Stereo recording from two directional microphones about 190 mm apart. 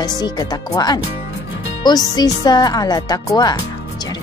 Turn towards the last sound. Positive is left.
turn(degrees=20)  # may be behind; listen again after turning